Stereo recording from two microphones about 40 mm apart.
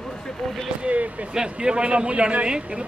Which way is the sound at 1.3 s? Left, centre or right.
Right.